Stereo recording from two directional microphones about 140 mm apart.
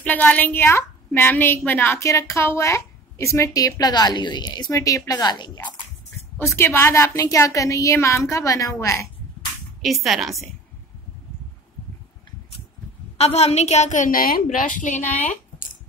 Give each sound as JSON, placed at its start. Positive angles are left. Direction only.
{"t": 0.0, "sound": "a woman's voice", "side_deg": 10}
{"t": 6.3, "sound": "a woman's voice", "side_deg": 15}
{"t": 9.8, "sound": "speech", "side_deg": 0}
{"t": 13.2, "sound": "a woman's voice", "side_deg": 45}
{"t": 15.0, "sound": "speech", "side_deg": 10}